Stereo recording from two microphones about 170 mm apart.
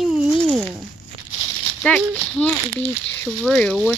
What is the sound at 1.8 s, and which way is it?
Speech, 5° left (ahead or behind).